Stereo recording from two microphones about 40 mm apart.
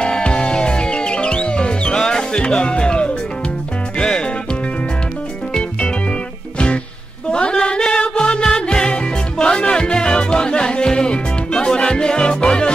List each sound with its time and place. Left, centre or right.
0.0 s music: left
7.2 s music: left